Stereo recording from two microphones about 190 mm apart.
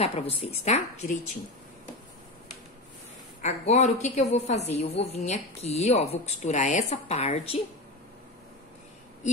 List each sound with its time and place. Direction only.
0.0 s speech: 35° left (ahead or behind)
3.4 s speech: 35° left (ahead or behind)